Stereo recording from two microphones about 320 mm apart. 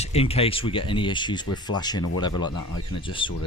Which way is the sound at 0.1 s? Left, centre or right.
Centre.